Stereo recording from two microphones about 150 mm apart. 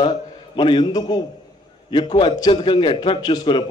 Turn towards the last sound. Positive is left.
turn(degrees=30)  # may be behind; listen again after turning